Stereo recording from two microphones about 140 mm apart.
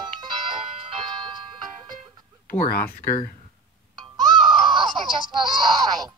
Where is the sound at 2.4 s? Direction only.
90° left.